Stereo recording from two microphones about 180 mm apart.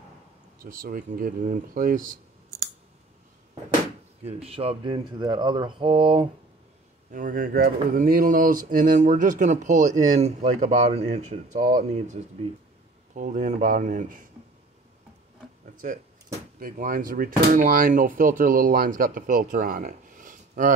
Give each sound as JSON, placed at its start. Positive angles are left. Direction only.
{"t": 0.6, "sound": "speech", "side_deg": -50}
{"t": 4.2, "sound": "speech", "side_deg": -35}
{"t": 7.1, "sound": "speech", "side_deg": -50}
{"t": 15.8, "sound": "speech", "side_deg": -45}